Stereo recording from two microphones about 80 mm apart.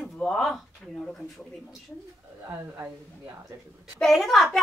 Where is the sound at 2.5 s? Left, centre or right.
Right.